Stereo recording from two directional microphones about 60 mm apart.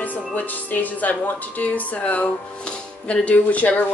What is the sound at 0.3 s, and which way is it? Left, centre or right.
A woman's voice, left.